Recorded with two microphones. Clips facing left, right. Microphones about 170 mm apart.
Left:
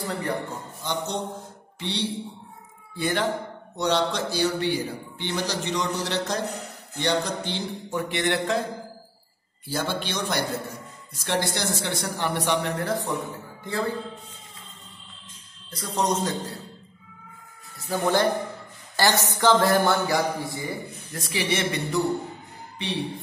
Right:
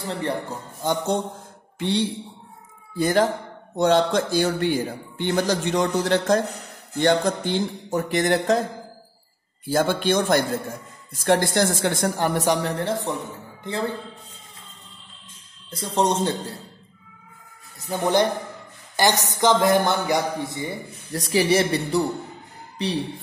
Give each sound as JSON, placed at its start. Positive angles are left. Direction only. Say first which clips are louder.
{"t": 0.2, "sound": "speech", "louder": "right 2 dB", "side_deg": -30}
{"t": 0.8, "sound": "a man's voice", "louder": "right 6 dB", "side_deg": -50}
{"t": 9.7, "sound": "a man's voice", "louder": "right 8 dB", "side_deg": -50}
{"t": 15.7, "sound": "speech", "louder": "right 3 dB", "side_deg": -30}
{"t": 17.7, "sound": "a woman's voice", "louder": "right 2 dB", "side_deg": -20}
{"t": 21.1, "sound": "speech", "louder": "right 8 dB", "side_deg": -40}